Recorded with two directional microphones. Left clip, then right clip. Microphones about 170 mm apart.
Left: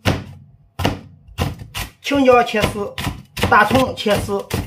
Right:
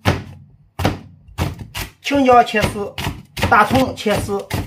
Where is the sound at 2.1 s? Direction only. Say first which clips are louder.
Right 1 dB; centre (ahead or behind).